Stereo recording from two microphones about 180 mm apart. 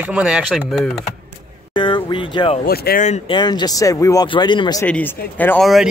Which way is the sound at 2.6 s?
55° left (ahead or behind).